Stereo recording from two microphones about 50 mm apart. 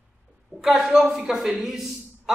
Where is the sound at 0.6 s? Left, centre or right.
Centre.